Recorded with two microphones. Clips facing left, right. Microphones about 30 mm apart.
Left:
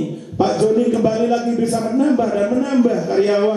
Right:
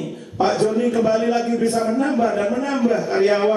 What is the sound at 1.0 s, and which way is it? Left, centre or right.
A man's voice, centre.